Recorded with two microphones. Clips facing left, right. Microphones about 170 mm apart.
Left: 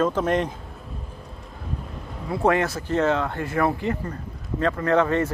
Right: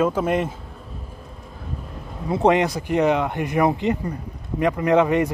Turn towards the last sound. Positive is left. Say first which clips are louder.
# right 3 dB
turn(degrees=-15)  # may be behind; listen again after turning